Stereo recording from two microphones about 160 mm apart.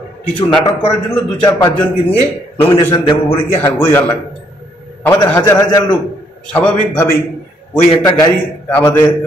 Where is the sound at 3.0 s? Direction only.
40° left (ahead or behind).